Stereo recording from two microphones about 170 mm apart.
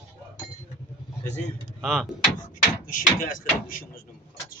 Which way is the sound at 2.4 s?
50° left (ahead or behind).